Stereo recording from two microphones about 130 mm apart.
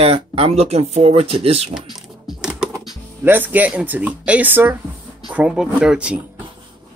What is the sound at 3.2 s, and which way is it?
Speech, 15° right (ahead or behind).